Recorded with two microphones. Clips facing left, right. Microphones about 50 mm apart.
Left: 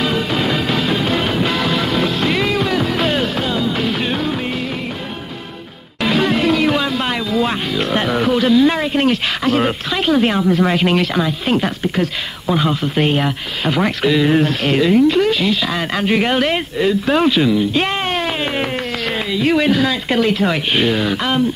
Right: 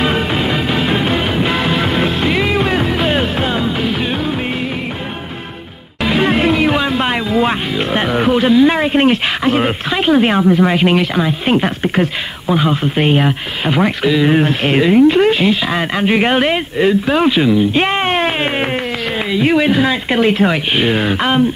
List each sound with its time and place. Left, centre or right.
0.0 s music: right
0.4 s music: centre
6.2 s music: right
10.6 s speech: centre
12.4 s speech: centre
14.3 s speech: right
19.3 s speech: centre